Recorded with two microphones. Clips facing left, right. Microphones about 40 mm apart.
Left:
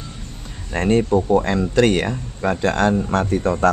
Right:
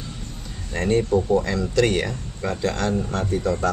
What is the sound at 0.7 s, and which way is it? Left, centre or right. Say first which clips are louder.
Speech: left 3 dB; left.